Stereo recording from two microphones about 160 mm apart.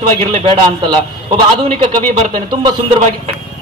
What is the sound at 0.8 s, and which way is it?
A man's voice, 30° right (ahead or behind).